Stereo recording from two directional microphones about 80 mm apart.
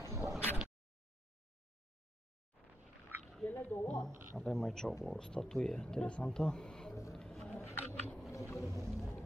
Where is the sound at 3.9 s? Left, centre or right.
Centre.